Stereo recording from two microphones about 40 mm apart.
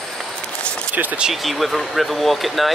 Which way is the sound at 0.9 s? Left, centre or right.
Right.